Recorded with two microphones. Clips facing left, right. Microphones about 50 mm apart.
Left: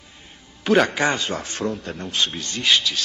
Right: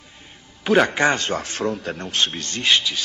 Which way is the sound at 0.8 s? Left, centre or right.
Centre.